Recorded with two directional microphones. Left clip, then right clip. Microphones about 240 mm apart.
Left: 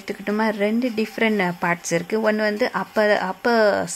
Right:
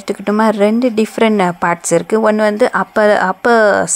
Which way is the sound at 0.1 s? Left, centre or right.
Right.